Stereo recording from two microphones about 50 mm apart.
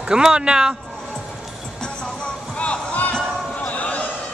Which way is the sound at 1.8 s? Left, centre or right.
Centre.